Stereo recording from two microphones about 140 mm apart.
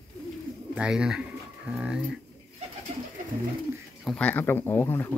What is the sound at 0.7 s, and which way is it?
Speech, 5° right (ahead or behind).